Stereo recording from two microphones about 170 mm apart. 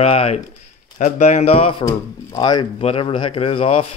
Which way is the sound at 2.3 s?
25° left (ahead or behind).